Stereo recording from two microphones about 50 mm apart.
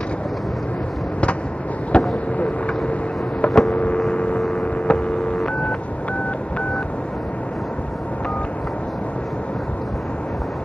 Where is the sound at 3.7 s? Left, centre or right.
Left.